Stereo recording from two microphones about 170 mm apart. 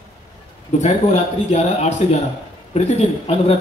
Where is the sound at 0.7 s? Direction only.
40° left (ahead or behind).